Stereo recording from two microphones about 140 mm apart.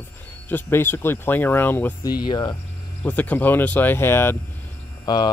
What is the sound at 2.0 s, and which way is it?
Speech, 30° left (ahead or behind).